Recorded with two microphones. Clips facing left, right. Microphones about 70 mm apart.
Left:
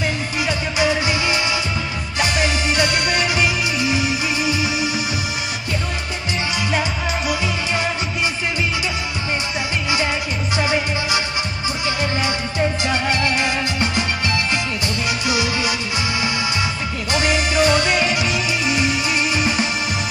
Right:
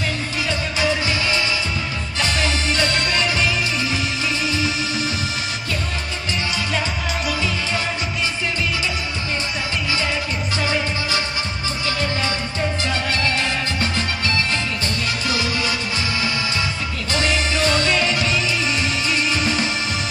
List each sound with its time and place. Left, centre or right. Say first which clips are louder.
0.5 s music: left 2 dB; centre
10.6 s music: left 3 dB; centre
12.5 s music: left 5 dB; centre
17.1 s music: left 2 dB; centre